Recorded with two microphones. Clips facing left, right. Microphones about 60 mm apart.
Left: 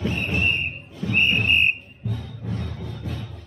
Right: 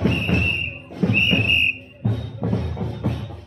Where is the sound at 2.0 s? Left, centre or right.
Right.